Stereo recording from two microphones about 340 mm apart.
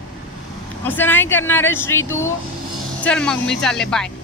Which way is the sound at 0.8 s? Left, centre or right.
Centre.